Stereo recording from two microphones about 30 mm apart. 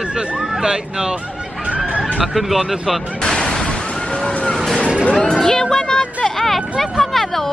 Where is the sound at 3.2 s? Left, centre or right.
Left.